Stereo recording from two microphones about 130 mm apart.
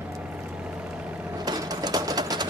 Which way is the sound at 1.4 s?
30° right (ahead or behind).